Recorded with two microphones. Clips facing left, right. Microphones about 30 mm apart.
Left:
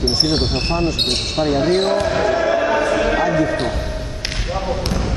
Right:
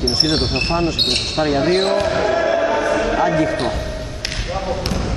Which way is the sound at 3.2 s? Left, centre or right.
Right.